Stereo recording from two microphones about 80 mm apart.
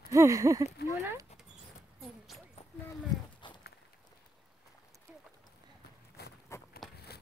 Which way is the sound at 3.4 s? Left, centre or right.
Left.